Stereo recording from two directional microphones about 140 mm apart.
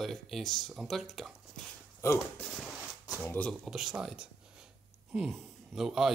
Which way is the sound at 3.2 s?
10° left (ahead or behind).